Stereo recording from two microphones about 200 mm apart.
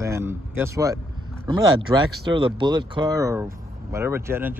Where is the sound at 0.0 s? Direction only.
15° right (ahead or behind).